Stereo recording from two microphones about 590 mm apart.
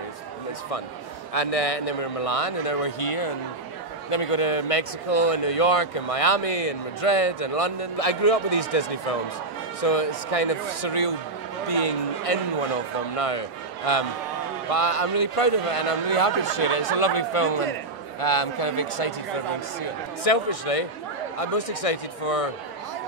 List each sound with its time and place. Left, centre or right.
1.3 s speech: left
20.2 s speech: left